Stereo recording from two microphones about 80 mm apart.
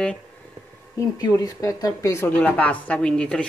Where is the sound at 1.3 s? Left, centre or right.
Left.